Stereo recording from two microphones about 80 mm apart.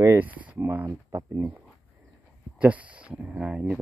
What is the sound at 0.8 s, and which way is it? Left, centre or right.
Speech, right.